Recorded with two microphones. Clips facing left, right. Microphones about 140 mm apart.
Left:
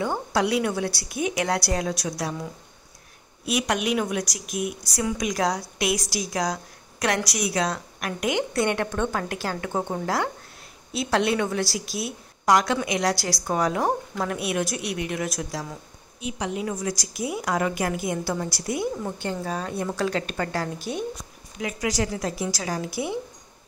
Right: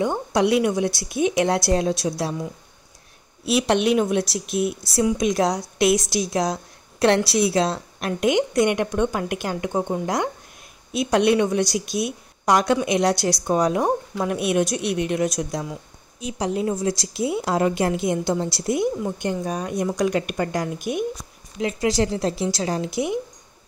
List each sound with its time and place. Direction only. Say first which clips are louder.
0.0 s a woman's voice: right 4 dB; 20° right (ahead or behind)
3.9 s a woman's voice: right 6 dB; 25° right (ahead or behind)
16.2 s a woman's voice: right 4 dB; 35° right (ahead or behind); by 21.0 s 15° right (ahead or behind)
21.5 s a woman's voice: right 5 dB; 25° right (ahead or behind)